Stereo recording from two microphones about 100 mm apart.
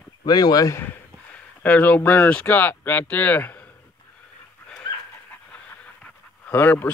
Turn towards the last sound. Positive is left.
turn(degrees=20)  # may be behind; listen again after turning